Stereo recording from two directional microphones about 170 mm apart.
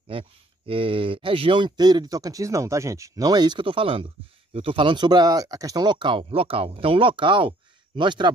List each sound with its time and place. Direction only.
0.1 s speech: 30° right (ahead or behind)